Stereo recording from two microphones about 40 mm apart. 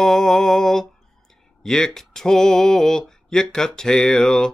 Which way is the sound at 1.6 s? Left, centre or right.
Centre.